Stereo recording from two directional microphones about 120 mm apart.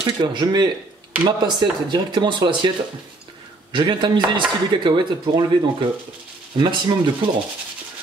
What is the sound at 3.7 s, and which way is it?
Speech, 40° right (ahead or behind).